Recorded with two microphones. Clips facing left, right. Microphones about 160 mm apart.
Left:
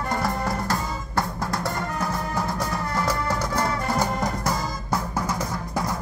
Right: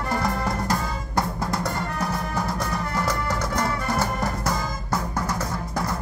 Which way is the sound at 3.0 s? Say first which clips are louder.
Left 1 dB; 10° left (ahead or behind).